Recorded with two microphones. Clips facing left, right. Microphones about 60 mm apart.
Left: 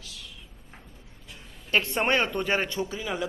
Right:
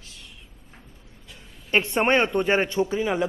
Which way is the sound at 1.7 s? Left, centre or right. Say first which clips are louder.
Right 4 dB; right.